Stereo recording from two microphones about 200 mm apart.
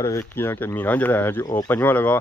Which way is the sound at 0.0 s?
15° left (ahead or behind).